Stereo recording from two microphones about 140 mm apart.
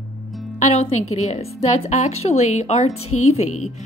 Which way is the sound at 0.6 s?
50° left (ahead or behind).